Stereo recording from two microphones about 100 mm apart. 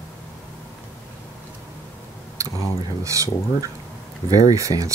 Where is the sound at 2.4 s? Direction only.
35° right (ahead or behind).